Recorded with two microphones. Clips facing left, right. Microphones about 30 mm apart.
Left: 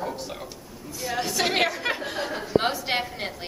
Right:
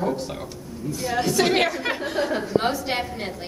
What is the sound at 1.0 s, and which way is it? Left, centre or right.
A woman's voice, centre.